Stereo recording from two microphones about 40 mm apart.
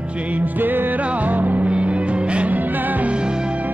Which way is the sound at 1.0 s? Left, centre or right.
Right.